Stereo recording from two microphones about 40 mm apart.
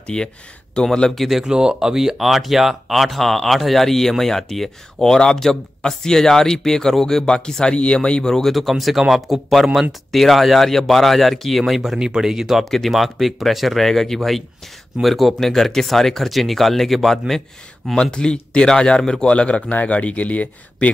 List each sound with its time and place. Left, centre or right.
0.0 s speech: left
1.4 s speech: centre
8.5 s speech: centre
12.0 s speech: centre
18.1 s speech: left
19.2 s speech: left